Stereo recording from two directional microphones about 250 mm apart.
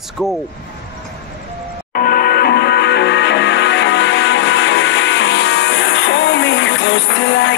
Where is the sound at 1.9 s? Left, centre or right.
Left.